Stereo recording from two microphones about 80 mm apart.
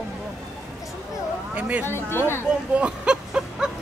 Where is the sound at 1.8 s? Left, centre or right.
Left.